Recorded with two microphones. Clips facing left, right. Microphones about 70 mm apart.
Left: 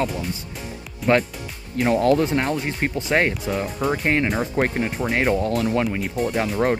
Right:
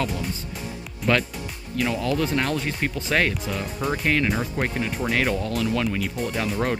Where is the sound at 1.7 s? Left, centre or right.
Left.